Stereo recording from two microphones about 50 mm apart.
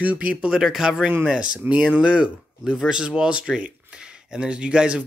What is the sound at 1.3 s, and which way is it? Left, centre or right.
Speech, right.